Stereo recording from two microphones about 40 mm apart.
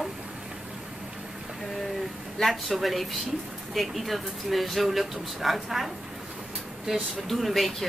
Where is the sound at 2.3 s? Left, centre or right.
Centre.